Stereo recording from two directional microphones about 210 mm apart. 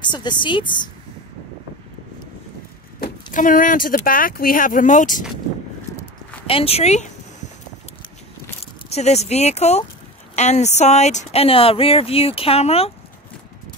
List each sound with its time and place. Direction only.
0.0 s speech: 20° left (ahead or behind)
3.0 s speech: 40° left (ahead or behind)
6.4 s speech: 25° left (ahead or behind)
8.9 s speech: 30° left (ahead or behind)